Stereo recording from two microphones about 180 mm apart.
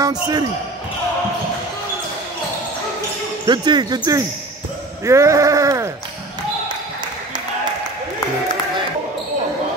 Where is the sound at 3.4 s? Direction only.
25° right (ahead or behind).